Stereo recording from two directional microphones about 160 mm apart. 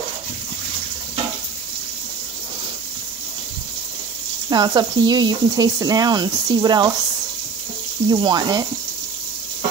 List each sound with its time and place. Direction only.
4.5 s speech: 25° right (ahead or behind)
8.1 s speech: 25° right (ahead or behind)